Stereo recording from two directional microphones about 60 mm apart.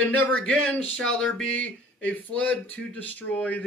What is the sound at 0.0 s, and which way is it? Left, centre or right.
Speech, left.